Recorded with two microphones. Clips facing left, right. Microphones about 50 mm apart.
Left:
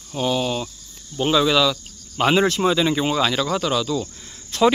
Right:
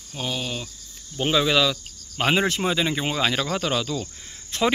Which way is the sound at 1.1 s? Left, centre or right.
Centre.